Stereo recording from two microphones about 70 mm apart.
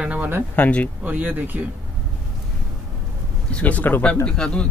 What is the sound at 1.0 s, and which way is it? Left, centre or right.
Speech, right.